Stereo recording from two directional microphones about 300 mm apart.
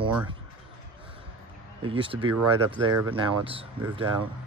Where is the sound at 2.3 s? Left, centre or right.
Right.